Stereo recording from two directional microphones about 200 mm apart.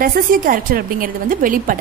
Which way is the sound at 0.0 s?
45° right (ahead or behind).